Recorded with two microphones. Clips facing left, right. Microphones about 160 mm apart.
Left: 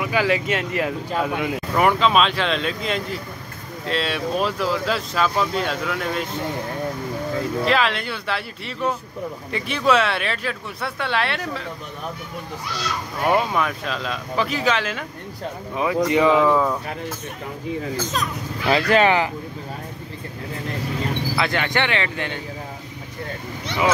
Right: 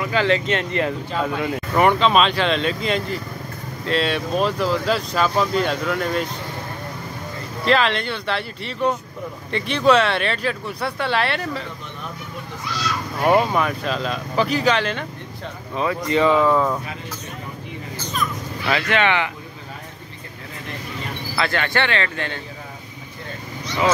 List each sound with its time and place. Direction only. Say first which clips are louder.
0.0 s speech: right 1 dB; 10° left (ahead or behind)
7.6 s speech: right 5 dB; 5° left (ahead or behind)
13.2 s speech: right 3 dB; centre (ahead or behind)
18.7 s speech: left 3 dB; 35° left (ahead or behind)
21.4 s speech: right 2 dB; 15° left (ahead or behind)